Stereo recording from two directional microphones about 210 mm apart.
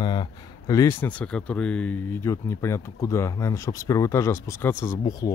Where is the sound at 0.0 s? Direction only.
20° left (ahead or behind).